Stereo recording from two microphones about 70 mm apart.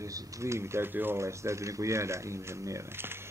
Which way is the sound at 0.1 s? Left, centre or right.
Right.